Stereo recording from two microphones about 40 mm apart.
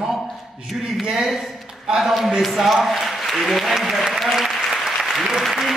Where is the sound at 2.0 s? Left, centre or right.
Centre.